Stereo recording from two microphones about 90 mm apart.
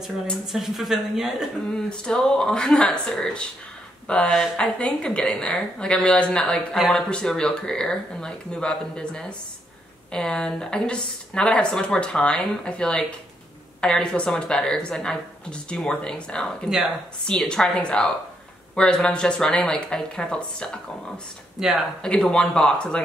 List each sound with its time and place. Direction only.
0.5 s a woman's voice: 5° right (ahead or behind)
1.7 s a woman's voice: 10° left (ahead or behind)
4.7 s a woman's voice: 10° left (ahead or behind)
16.6 s speech: 10° right (ahead or behind)
17.3 s a woman's voice: 5° left (ahead or behind)
21.5 s speech: 5° right (ahead or behind)
22.0 s a woman's voice: 10° left (ahead or behind)